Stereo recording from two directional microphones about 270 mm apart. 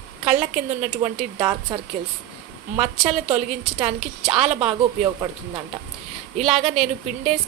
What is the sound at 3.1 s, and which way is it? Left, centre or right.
A woman's voice, right.